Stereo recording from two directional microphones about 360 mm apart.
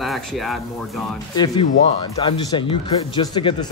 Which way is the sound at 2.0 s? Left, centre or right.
Centre.